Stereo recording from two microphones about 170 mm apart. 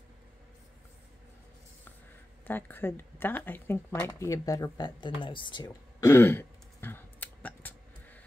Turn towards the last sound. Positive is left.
turn(degrees=10)  # may be behind; listen again after turning